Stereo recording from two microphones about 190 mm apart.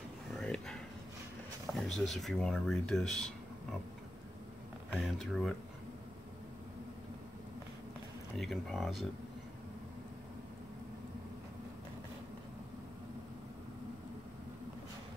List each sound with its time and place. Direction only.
0.4 s a sound: 5° left (ahead or behind)
1.7 s speech: centre (ahead or behind)
4.9 s speech: centre (ahead or behind)
8.4 s speech: centre (ahead or behind)